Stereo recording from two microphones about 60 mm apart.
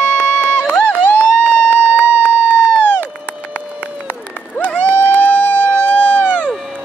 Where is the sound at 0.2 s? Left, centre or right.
Left.